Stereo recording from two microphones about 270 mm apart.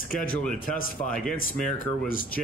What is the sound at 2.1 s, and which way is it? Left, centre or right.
Speech, left.